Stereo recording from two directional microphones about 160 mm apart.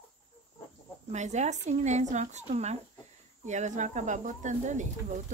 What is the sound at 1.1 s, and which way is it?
Speech, 45° right (ahead or behind).